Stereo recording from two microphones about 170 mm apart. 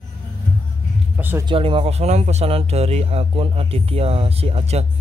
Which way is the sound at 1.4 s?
30° right (ahead or behind).